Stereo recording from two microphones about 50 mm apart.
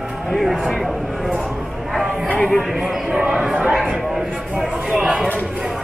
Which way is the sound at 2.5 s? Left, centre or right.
Centre.